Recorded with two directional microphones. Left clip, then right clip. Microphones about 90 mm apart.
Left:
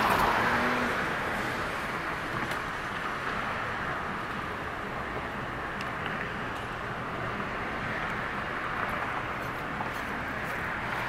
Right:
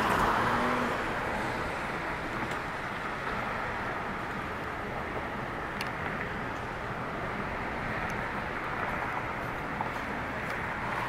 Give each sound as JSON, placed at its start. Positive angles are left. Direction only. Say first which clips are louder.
{"t": 0.0, "sound": "vehicle", "louder": "left 2 dB", "side_deg": 25}